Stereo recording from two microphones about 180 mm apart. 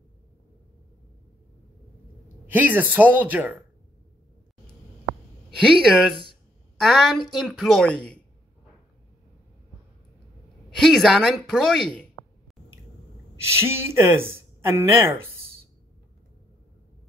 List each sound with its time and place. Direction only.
2.4 s speech: 10° right (ahead or behind)
5.9 s a woman's voice: 5° right (ahead or behind)
10.8 s a woman's voice: centre (ahead or behind)
13.4 s speech: 15° right (ahead or behind)